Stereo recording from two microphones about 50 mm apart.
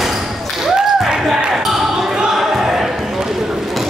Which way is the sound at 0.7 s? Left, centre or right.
Centre.